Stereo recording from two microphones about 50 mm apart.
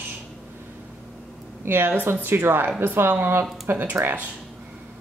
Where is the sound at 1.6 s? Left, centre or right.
Right.